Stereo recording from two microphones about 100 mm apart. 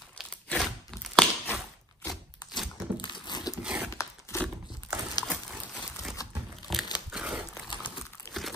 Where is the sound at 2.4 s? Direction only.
45° left (ahead or behind).